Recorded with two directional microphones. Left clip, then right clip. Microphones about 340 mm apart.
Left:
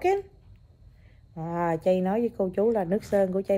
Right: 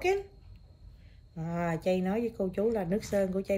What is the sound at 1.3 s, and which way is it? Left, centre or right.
Speech, centre.